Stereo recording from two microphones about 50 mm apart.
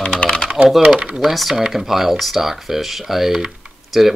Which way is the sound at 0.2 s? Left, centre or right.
Centre.